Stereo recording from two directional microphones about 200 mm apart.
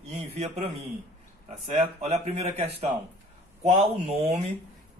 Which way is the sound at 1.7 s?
35° right (ahead or behind).